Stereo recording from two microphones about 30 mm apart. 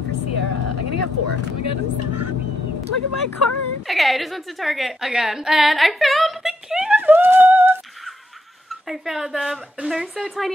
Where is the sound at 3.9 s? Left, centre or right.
Centre.